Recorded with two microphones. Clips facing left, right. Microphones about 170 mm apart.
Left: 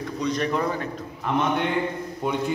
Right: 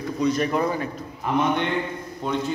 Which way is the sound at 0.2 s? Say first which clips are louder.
Right 3 dB; 5° right (ahead or behind).